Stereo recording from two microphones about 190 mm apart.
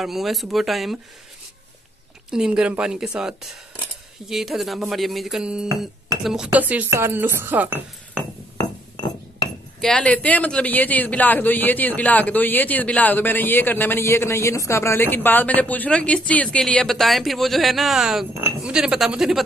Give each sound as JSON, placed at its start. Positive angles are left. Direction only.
{"t": 0.0, "sound": "speech", "side_deg": 0}
{"t": 2.3, "sound": "speech", "side_deg": -5}
{"t": 8.5, "sound": "chink", "side_deg": 20}
{"t": 9.8, "sound": "speech", "side_deg": 5}